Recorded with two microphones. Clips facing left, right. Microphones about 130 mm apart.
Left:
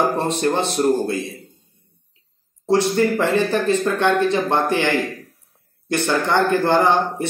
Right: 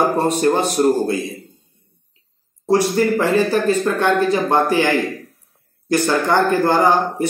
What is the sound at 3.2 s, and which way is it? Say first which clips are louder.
A man's voice: right 2 dB; 10° right (ahead or behind).